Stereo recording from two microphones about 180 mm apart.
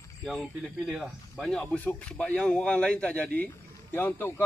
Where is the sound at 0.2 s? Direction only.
Centre (ahead or behind).